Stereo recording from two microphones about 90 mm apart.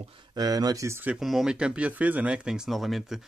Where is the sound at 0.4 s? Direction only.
45° right (ahead or behind).